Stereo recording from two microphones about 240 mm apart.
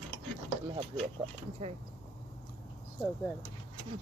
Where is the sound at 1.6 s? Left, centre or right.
Right.